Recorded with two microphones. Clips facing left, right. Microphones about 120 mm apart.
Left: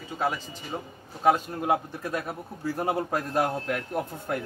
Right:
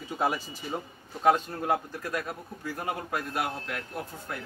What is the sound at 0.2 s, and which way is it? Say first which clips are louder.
Speech: even; 10° right (ahead or behind).